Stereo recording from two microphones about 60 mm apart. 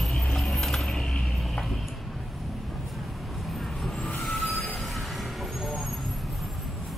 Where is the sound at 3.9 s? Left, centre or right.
Left.